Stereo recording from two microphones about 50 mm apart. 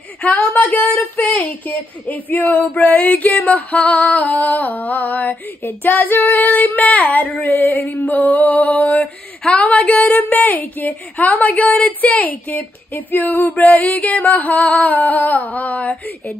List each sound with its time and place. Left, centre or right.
0.2 s a woman's voice: left
2.0 s a woman's voice: left